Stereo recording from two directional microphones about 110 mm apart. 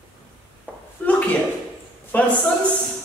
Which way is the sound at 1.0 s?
15° left (ahead or behind).